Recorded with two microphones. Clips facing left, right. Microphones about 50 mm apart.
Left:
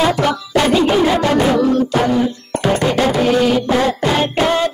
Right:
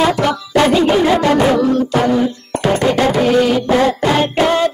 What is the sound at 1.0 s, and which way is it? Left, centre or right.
Music, centre.